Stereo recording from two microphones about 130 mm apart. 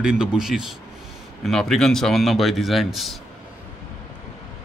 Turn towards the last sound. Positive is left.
turn(degrees=0)  # may be behind; listen again after turning